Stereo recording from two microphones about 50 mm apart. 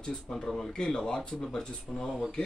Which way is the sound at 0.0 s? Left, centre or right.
Centre.